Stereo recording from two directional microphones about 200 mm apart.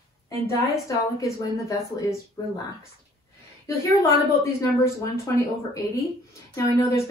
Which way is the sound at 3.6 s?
15° left (ahead or behind).